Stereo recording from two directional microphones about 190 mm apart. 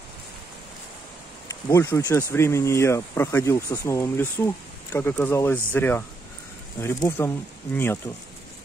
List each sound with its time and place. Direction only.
1.5 s speech: 15° left (ahead or behind)